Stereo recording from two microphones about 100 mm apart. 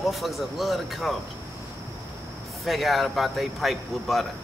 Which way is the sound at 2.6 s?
Centre (ahead or behind).